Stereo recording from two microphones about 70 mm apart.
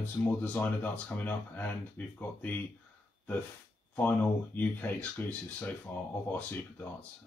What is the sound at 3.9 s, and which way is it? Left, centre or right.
Speech, left.